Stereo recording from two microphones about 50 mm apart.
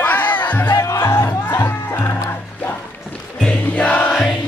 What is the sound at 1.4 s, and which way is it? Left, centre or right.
Music, left.